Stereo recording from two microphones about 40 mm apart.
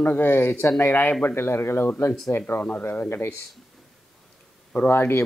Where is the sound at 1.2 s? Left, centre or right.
Left.